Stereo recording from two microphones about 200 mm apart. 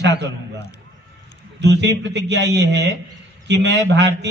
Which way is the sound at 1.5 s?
60° right (ahead or behind).